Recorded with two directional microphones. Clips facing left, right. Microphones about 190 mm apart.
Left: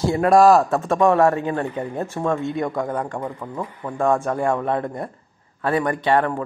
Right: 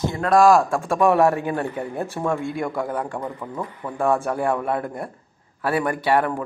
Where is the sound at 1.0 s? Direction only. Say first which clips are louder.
Even; 10° right (ahead or behind).